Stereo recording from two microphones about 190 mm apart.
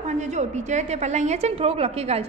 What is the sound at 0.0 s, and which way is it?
A woman's voice, 35° right (ahead or behind).